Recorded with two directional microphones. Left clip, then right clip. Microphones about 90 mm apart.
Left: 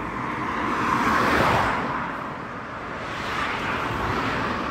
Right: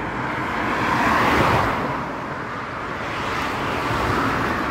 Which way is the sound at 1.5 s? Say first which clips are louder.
Right 2 dB; 90° left.